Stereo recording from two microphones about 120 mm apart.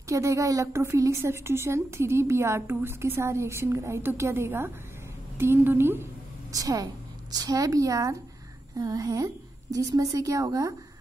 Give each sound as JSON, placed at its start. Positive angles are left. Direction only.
{"t": 0.1, "sound": "a woman's voice", "side_deg": -25}
{"t": 6.5, "sound": "a woman's voice", "side_deg": -30}